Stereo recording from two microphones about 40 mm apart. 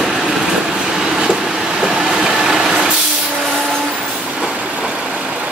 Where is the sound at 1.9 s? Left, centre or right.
Centre.